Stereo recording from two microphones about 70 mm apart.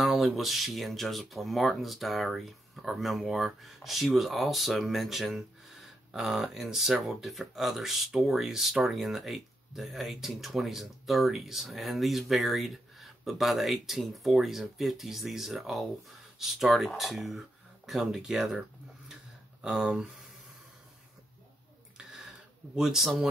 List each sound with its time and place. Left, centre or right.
0.0 s speech: centre
19.6 s speech: centre
21.9 s a sound: centre
22.8 s speech: centre